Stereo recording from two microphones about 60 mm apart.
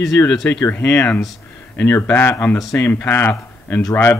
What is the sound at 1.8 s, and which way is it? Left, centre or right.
Speech, left.